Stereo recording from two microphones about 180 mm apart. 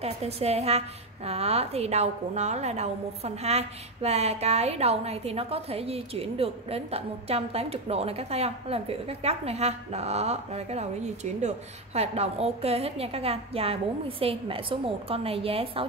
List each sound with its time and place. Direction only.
0.0 s a woman's voice: 35° right (ahead or behind)